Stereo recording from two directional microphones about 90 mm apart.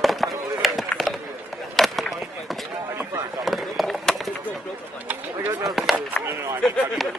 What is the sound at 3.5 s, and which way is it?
Run, centre (ahead or behind).